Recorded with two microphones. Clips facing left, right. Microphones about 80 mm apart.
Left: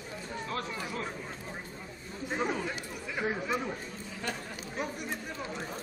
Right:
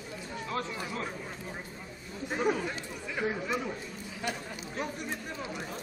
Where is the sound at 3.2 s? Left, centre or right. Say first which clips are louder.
Even; centre.